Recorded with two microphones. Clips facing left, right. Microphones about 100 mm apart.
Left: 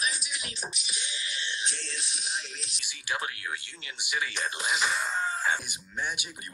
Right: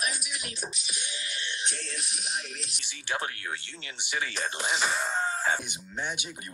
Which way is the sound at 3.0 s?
40° right (ahead or behind).